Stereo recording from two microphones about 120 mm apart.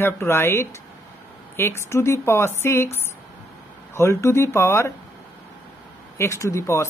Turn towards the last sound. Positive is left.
turn(degrees=25)  # may be behind; listen again after turning